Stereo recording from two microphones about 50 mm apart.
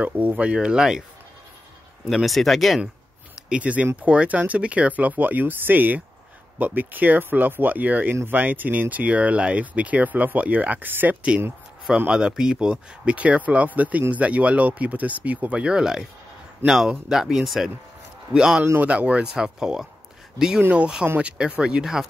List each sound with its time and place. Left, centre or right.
0.0 s speech: right; by 1.0 s centre
2.0 s speech: centre
3.4 s speech: right
12.1 s speech: centre
15.6 s speech: centre
21.2 s speech: right